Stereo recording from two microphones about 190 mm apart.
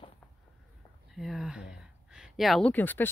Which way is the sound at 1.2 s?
Centre (ahead or behind).